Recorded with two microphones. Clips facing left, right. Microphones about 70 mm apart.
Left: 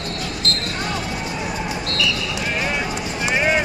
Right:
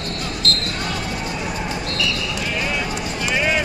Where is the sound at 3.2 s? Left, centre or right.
Left.